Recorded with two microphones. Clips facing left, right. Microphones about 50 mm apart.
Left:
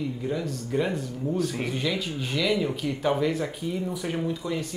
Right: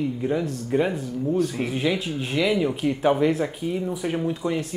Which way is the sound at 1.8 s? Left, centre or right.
Centre.